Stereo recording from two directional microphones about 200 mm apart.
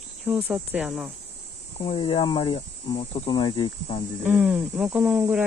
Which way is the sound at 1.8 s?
25° left (ahead or behind).